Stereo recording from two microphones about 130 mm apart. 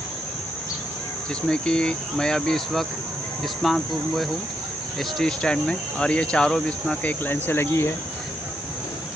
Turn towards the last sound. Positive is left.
turn(degrees=20)  # may be behind; listen again after turning